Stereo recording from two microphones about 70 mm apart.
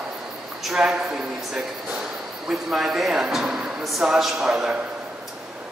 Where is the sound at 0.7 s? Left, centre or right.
Centre.